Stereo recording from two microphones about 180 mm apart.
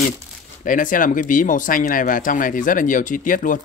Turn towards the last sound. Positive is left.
turn(degrees=50)  # may be behind; listen again after turning